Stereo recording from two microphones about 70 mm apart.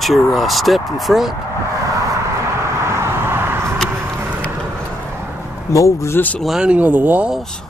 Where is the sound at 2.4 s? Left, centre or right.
Right.